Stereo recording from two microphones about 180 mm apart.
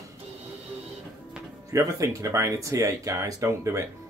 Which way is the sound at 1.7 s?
20° right (ahead or behind).